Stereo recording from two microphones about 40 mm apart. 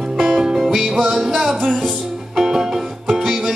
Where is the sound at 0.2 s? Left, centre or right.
Centre.